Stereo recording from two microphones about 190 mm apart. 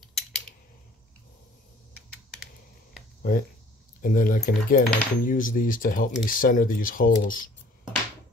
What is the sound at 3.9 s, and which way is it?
Speech, 45° left (ahead or behind).